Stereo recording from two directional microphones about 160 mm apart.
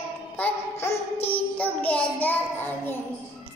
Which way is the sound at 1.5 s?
10° left (ahead or behind).